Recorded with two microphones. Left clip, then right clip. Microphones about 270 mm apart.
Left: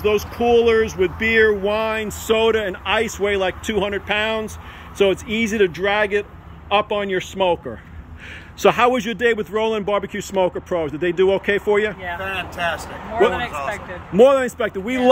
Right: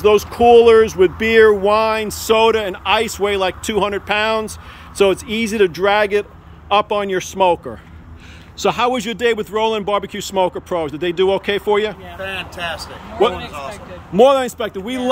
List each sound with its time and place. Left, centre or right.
0.0 s speech: centre
12.2 s speech: centre
14.7 s speech: centre